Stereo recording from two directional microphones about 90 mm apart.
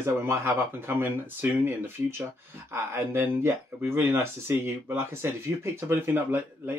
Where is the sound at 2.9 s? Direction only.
25° right (ahead or behind).